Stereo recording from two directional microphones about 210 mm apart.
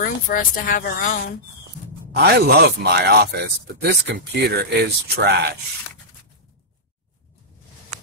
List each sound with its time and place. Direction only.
0.0 s speech: 40° left (ahead or behind)
2.1 s speech: 50° right (ahead or behind)